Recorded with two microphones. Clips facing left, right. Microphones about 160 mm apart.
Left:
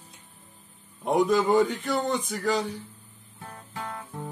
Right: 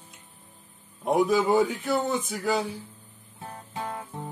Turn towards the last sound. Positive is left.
turn(degrees=-20)  # may be behind; listen again after turning